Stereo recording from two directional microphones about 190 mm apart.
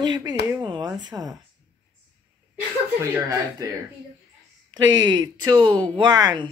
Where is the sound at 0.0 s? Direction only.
20° right (ahead or behind).